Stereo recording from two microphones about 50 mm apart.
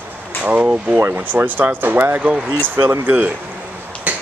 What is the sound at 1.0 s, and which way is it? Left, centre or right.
Speech, right.